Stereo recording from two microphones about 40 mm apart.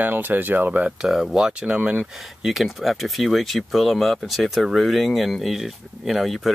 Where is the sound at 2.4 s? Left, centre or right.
Centre.